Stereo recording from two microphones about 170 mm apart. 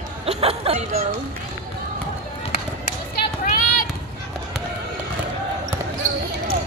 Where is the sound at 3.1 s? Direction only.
60° left (ahead or behind).